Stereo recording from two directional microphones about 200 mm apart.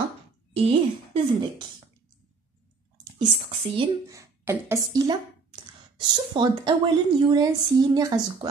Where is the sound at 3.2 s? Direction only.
25° right (ahead or behind).